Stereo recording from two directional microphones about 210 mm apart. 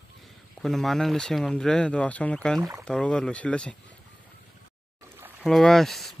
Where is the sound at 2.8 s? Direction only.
5° left (ahead or behind).